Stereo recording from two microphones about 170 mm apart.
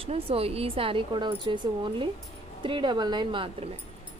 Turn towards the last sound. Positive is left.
turn(degrees=-30)  # may be behind; listen again after turning